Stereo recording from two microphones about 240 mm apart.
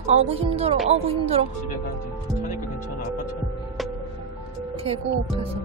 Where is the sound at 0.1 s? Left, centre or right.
Right.